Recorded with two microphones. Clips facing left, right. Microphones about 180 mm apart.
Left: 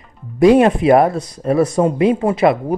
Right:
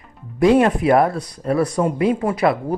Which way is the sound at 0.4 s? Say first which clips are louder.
Left 4 dB; 20° left (ahead or behind).